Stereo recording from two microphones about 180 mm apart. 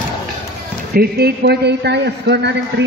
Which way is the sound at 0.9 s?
60° right (ahead or behind).